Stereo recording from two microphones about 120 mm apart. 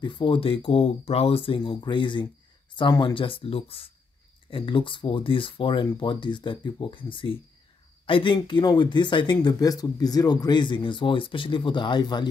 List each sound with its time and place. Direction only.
0.0 s speech: 45° left (ahead or behind)